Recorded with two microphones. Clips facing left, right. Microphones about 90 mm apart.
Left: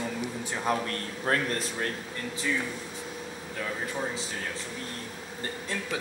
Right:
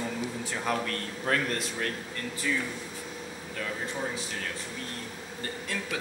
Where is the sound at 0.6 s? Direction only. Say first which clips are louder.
Left 2 dB; 30° left (ahead or behind).